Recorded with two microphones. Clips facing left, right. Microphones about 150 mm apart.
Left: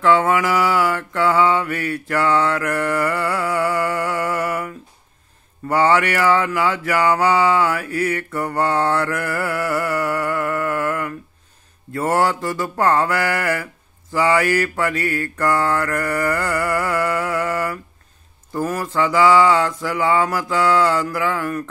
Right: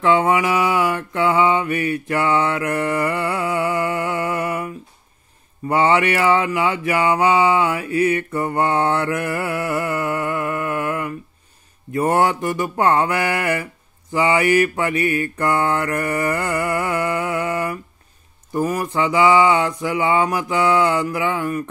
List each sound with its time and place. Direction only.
0.0 s mantra: 20° right (ahead or behind)